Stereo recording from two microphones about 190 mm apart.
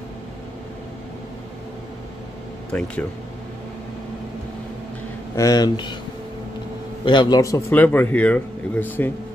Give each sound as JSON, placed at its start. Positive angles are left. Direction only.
{"t": 2.7, "sound": "speech", "side_deg": 5}
{"t": 5.3, "sound": "speech", "side_deg": 20}
{"t": 7.1, "sound": "a man's voice", "side_deg": 25}